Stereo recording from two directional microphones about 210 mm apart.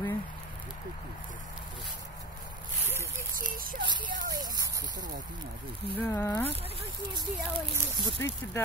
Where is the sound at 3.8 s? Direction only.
20° right (ahead or behind).